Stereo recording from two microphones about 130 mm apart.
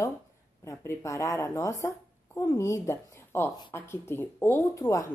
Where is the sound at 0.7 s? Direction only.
25° left (ahead or behind).